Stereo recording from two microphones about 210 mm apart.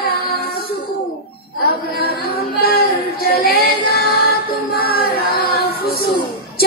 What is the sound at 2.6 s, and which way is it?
Child singing, 45° left (ahead or behind).